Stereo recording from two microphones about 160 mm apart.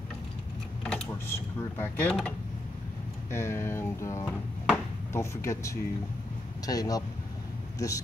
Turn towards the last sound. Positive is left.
turn(degrees=20)  # may be behind; listen again after turning